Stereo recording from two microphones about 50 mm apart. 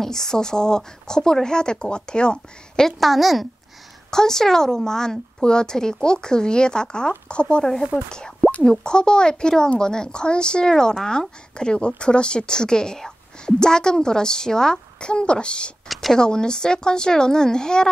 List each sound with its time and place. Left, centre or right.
0.0 s a woman's voice: centre
3.0 s a woman's voice: centre
4.1 s a woman's voice: centre
15.9 s speech: centre
16.2 s a woman's voice: centre